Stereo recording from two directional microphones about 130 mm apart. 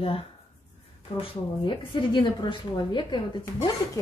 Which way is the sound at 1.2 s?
40° left (ahead or behind).